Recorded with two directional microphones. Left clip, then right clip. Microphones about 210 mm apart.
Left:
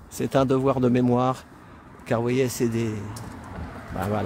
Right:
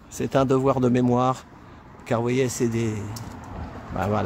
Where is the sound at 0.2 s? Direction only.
15° left (ahead or behind).